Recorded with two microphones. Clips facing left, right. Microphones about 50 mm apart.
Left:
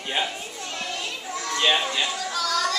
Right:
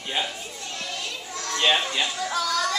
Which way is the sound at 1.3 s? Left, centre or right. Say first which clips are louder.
Left 4 dB; centre.